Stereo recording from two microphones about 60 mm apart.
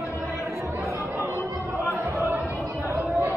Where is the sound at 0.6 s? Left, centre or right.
Right.